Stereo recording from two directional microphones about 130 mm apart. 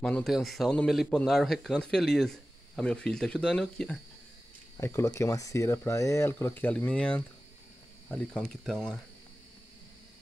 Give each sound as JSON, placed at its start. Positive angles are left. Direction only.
{"t": 0.0, "sound": "speech", "side_deg": 5}
{"t": 4.7, "sound": "speech", "side_deg": 20}
{"t": 6.3, "sound": "speech", "side_deg": 15}